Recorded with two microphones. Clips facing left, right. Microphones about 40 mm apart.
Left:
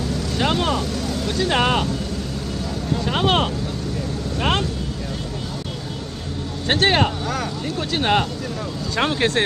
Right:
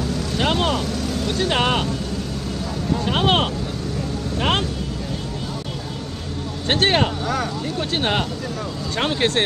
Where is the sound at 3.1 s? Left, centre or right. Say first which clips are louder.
Even; centre.